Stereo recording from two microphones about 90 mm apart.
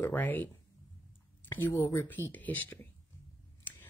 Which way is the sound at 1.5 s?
25° left (ahead or behind).